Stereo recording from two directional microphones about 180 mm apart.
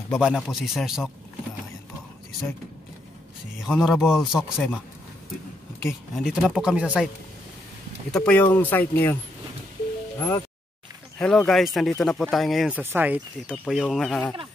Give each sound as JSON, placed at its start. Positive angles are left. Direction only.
{"t": 0.1, "sound": "speech", "side_deg": 0}
{"t": 3.6, "sound": "speech", "side_deg": 0}
{"t": 6.1, "sound": "speech", "side_deg": 0}
{"t": 8.1, "sound": "speech", "side_deg": 10}
{"t": 10.1, "sound": "speech", "side_deg": 15}
{"t": 11.1, "sound": "speech", "side_deg": 5}